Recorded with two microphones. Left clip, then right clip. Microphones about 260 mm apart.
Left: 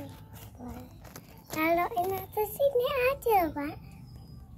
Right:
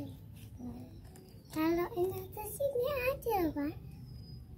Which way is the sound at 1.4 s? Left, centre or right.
Left.